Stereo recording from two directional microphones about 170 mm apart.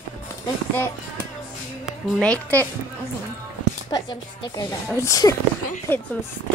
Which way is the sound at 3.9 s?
25° left (ahead or behind).